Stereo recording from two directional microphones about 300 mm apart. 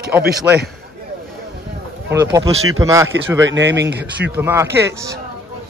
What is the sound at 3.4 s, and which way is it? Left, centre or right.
Speech, right.